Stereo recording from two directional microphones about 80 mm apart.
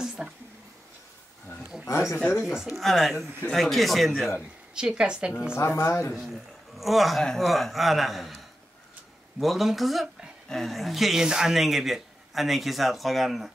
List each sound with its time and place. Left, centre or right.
0.0 s a sound: centre
1.9 s speech: left
2.5 s speech: centre
4.7 s a woman's voice: centre
5.8 s speech: left
6.1 s a man's voice: centre